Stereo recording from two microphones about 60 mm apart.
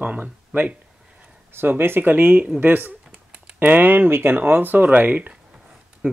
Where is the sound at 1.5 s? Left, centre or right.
Right.